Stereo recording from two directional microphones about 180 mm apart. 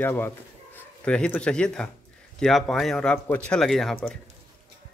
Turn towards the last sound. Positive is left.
turn(degrees=5)  # may be behind; listen again after turning